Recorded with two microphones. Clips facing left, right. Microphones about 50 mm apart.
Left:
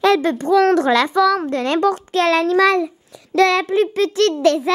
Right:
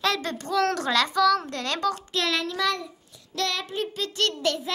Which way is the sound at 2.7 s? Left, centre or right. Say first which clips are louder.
Left 15 dB; left.